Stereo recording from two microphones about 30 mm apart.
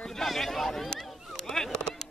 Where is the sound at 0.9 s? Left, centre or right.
Centre.